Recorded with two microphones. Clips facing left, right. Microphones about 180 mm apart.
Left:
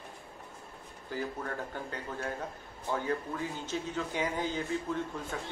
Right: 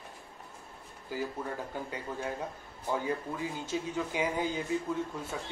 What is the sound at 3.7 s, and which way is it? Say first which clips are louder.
Speech: right 3 dB; 10° right (ahead or behind).